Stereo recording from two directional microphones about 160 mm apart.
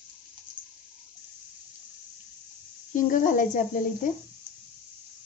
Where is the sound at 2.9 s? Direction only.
55° left (ahead or behind).